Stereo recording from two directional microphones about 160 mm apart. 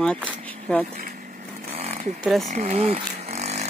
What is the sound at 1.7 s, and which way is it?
Chainsaw, 50° right (ahead or behind).